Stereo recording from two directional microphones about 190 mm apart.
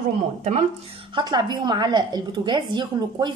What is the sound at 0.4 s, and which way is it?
Speech, 35° right (ahead or behind).